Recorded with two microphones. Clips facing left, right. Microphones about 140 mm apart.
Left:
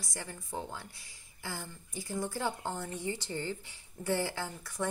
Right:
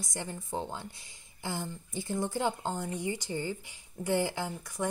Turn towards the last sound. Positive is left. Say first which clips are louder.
# right 3 dB
turn(degrees=-15)  # may be behind; listen again after turning